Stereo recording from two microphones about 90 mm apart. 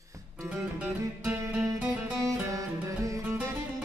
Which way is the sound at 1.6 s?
Centre (ahead or behind).